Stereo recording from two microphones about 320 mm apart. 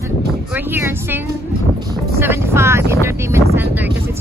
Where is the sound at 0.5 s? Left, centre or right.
Centre.